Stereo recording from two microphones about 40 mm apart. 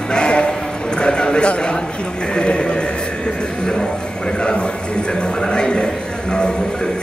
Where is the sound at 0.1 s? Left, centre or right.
Left.